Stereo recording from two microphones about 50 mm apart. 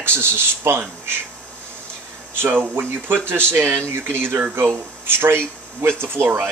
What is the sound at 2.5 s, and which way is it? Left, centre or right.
Speech, right.